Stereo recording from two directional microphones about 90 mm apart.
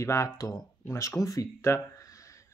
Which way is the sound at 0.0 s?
35° left (ahead or behind).